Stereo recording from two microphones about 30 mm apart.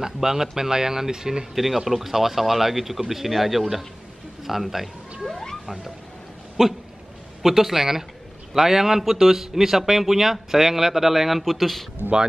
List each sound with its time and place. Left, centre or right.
0.0 s a man's voice: centre
1.5 s a man's voice: centre
5.2 s a sound: centre
6.6 s speech: centre
7.4 s a man's voice: centre
11.5 s speech: centre
12.0 s speech: right